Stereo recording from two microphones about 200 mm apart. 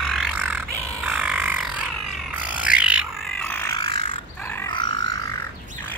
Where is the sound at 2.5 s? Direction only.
5° right (ahead or behind).